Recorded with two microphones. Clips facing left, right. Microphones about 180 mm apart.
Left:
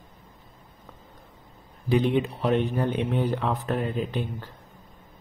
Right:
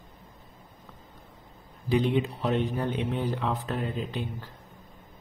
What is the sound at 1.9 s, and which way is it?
Speech, 60° left (ahead or behind).